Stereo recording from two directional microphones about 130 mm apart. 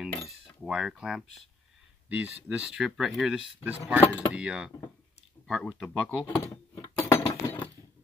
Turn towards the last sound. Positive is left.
turn(degrees=20)  # may be behind; listen again after turning